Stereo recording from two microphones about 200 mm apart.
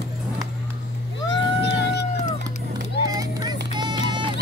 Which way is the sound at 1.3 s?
60° left (ahead or behind).